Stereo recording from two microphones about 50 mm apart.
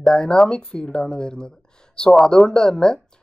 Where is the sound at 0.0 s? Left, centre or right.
Centre.